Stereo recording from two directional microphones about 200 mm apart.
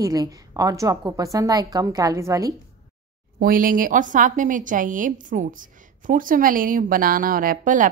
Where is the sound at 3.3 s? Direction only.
45° right (ahead or behind).